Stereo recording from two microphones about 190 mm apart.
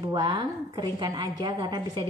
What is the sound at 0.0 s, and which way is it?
A woman's voice, 25° right (ahead or behind).